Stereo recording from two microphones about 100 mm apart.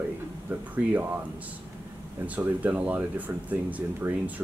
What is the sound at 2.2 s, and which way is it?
Speech, 15° right (ahead or behind).